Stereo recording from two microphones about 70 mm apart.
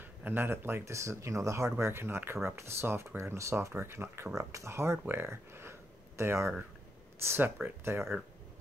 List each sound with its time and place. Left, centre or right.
0.0 s speech: right
4.4 s speech: right